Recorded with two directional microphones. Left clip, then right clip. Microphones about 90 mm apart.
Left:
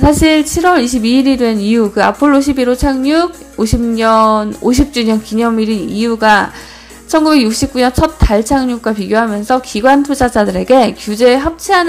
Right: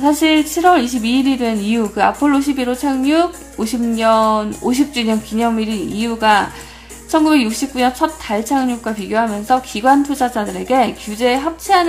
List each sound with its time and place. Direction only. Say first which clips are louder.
0.0 s a woman's voice: left 4 dB; 45° left (ahead or behind)